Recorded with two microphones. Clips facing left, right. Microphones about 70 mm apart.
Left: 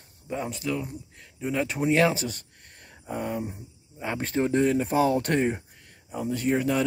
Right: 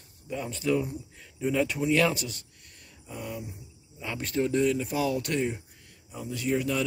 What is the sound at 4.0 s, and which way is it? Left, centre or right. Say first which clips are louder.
Speech: left 2 dB; left.